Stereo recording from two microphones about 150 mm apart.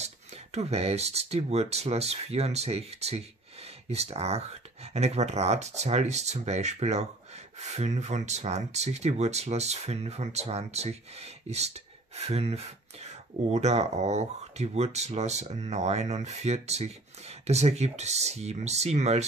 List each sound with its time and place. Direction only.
0.0 s speech: 45° right (ahead or behind)